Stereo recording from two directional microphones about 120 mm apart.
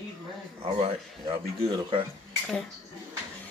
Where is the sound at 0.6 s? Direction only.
55° right (ahead or behind).